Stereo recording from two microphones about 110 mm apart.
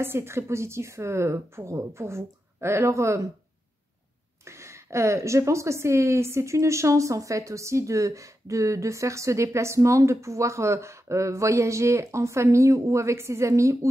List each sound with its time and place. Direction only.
0.0 s a woman's voice: 20° right (ahead or behind)
4.5 s a woman's voice: 25° right (ahead or behind)